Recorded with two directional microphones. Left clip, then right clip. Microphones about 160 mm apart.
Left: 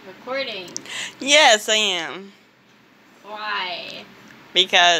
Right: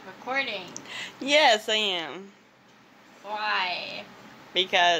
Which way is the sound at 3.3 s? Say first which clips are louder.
Left 1 dB; 25° right (ahead or behind).